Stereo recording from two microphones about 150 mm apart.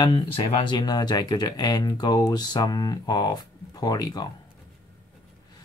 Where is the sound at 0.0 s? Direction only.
35° left (ahead or behind).